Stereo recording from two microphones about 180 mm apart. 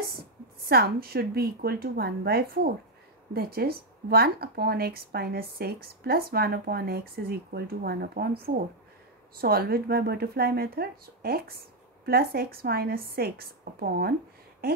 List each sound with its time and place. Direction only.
0.0 s speech: 60° right (ahead or behind)
8.5 s speech: 45° right (ahead or behind)
9.4 s speech: 55° right (ahead or behind)